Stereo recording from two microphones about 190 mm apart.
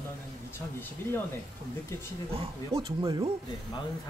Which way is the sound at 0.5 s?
10° left (ahead or behind).